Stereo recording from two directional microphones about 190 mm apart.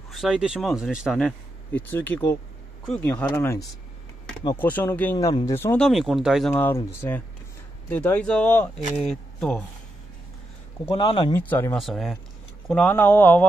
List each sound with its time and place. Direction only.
0.1 s speech: 5° right (ahead or behind)
5.1 s speech: 20° left (ahead or behind)
5.8 s speech: centre (ahead or behind)
6.5 s speech: 10° left (ahead or behind)
10.9 s speech: 25° left (ahead or behind)
11.3 s speech: 10° left (ahead or behind)